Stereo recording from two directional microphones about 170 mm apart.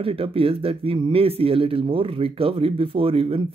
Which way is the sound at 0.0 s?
35° right (ahead or behind).